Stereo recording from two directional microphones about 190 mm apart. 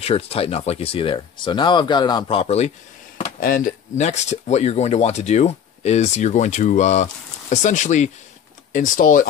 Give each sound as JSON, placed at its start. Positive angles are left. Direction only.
{"t": 0.0, "sound": "speech", "side_deg": 30}
{"t": 3.3, "sound": "speech", "side_deg": 45}